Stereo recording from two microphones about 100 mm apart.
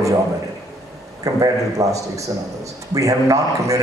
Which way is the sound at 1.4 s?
35° right (ahead or behind).